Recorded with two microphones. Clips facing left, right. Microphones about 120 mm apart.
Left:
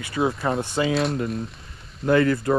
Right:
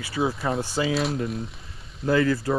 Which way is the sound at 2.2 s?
55° left (ahead or behind).